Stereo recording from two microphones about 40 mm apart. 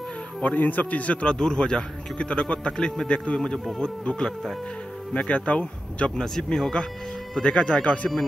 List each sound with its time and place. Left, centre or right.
0.4 s speech: left
1.2 s a man's voice: left
6.2 s a man's voice: centre; by 8.1 s left